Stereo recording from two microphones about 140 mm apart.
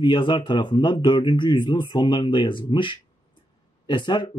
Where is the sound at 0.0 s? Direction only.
35° left (ahead or behind).